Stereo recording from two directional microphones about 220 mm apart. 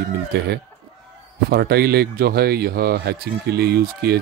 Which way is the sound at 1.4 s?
45° right (ahead or behind).